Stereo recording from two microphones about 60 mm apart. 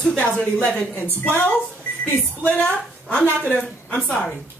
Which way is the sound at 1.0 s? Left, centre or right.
Left.